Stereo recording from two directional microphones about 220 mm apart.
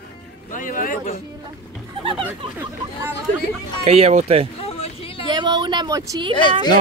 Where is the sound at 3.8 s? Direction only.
30° right (ahead or behind).